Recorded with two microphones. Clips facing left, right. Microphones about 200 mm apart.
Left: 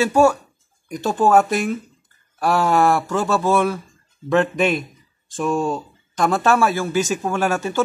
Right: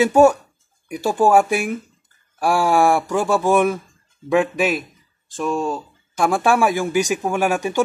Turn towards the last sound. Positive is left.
turn(degrees=-15)  # may be behind; listen again after turning